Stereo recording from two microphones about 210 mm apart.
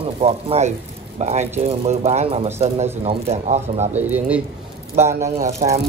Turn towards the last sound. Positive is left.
turn(degrees=-15)  # may be behind; listen again after turning